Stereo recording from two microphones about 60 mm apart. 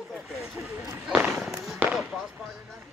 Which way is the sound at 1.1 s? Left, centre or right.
Centre.